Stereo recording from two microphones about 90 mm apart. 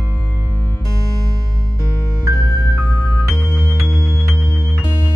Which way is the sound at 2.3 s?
30° right (ahead or behind).